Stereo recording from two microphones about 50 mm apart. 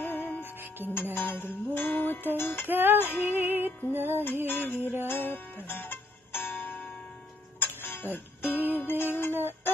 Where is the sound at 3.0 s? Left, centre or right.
Left.